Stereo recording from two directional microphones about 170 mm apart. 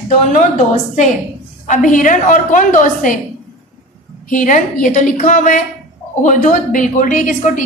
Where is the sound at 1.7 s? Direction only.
50° left (ahead or behind).